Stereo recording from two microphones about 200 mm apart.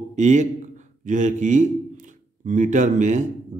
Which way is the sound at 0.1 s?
35° right (ahead or behind).